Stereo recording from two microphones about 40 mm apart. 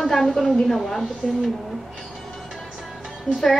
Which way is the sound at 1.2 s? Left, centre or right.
Centre.